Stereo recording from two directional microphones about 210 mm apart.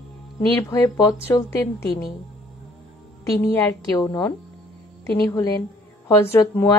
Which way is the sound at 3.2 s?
15° left (ahead or behind).